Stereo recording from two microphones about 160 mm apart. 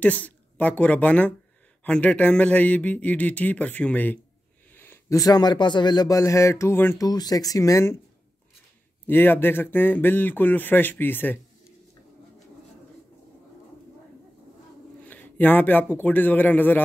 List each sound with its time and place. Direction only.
0.0 s a woman's voice: 10° left (ahead or behind)
9.0 s speech: 10° left (ahead or behind)
15.0 s speech: 10° left (ahead or behind)